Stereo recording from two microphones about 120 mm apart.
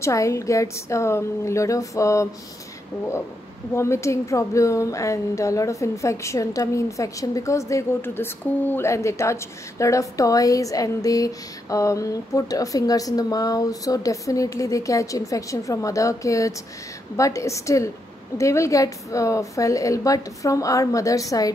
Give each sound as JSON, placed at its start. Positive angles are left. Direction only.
{"t": 0.0, "sound": "speech", "side_deg": 25}
{"t": 3.7, "sound": "speech", "side_deg": 25}